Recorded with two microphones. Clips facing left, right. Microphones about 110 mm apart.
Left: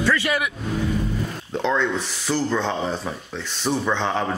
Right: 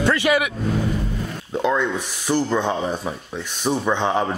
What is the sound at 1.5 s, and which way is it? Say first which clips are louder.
Speech: right 2 dB; 10° right (ahead or behind).